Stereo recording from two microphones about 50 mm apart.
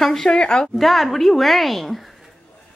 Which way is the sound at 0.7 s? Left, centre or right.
Centre.